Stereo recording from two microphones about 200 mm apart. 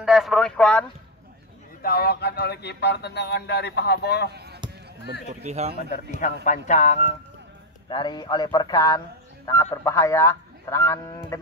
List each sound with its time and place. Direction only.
0.0 s speech: centre (ahead or behind)
1.8 s speech: 50° left (ahead or behind)
5.4 s a man's voice: 35° right (ahead or behind)
6.4 s speech: 35° left (ahead or behind)
7.9 s speech: 20° left (ahead or behind)